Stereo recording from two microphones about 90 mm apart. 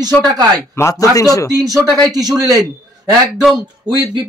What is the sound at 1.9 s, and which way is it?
Speech, 45° right (ahead or behind).